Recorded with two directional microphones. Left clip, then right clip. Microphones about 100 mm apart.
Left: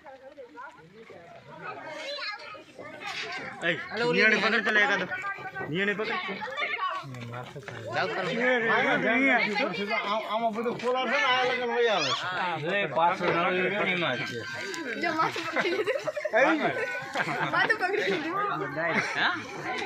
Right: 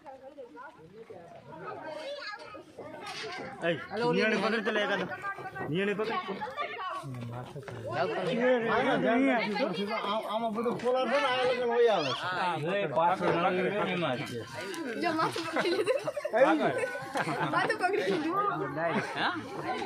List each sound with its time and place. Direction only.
3.9 s a man's voice: 35° right (ahead or behind); by 6.0 s 20° right (ahead or behind)
6.0 s speech: 50° right (ahead or behind)
7.9 s a man's voice: 25° right (ahead or behind)
8.7 s speech: centre (ahead or behind)
9.7 s speech: 15° right (ahead or behind)
12.3 s a man's voice: 5° left (ahead or behind)
16.4 s a man's voice: 5° left (ahead or behind)
18.0 s speech: 5° right (ahead or behind)
18.6 s a man's voice: 10° left (ahead or behind)